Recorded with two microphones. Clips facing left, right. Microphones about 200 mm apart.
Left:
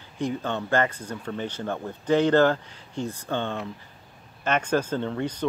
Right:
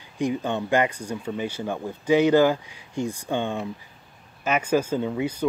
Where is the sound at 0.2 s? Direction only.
15° right (ahead or behind).